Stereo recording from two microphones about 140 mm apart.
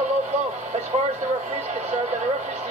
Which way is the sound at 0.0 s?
55° right (ahead or behind).